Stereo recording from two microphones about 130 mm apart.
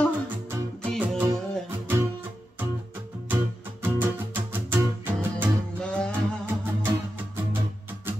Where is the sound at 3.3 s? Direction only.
15° right (ahead or behind).